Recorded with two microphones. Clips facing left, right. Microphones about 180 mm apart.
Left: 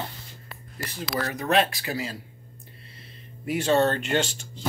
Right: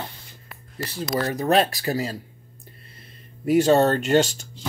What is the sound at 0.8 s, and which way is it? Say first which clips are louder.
Speech: right 5 dB; 35° right (ahead or behind).